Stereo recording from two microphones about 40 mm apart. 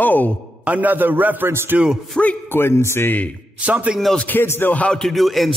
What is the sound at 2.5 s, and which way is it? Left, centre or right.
Speech, left.